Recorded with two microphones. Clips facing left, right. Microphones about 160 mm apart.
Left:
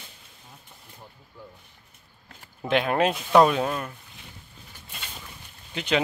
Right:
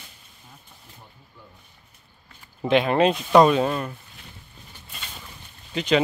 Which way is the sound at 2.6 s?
5° left (ahead or behind).